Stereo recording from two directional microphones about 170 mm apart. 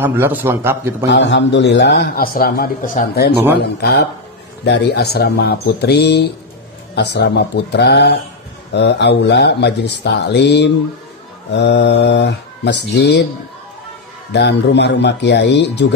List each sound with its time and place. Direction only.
0.0 s a man's voice: 10° right (ahead or behind)
1.0 s a man's voice: 90° left; by 4.1 s 70° left (ahead or behind)
4.6 s a man's voice: 85° left
14.3 s speech: 85° left